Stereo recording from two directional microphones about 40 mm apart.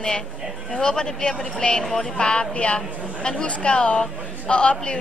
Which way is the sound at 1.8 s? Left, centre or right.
Centre.